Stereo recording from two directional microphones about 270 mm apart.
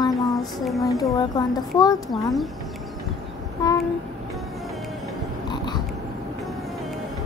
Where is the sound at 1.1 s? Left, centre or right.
Centre.